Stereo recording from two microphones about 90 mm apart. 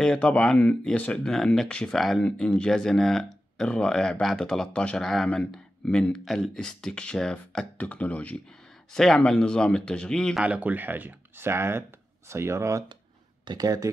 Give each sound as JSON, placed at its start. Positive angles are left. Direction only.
{"t": 0.0, "sound": "speech", "side_deg": 10}
{"t": 6.2, "sound": "speech", "side_deg": 0}
{"t": 7.7, "sound": "speech", "side_deg": 15}
{"t": 10.4, "sound": "speech", "side_deg": -15}